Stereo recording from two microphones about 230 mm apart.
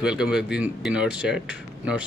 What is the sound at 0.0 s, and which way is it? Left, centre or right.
Speech, centre.